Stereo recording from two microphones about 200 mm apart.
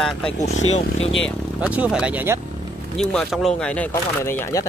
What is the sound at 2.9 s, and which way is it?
Speech, 5° left (ahead or behind).